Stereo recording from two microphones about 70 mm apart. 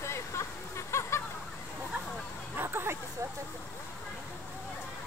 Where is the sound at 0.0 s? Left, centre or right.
Left.